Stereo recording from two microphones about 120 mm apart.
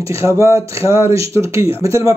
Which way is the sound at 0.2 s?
25° right (ahead or behind).